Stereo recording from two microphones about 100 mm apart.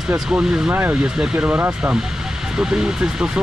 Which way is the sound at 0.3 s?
15° right (ahead or behind).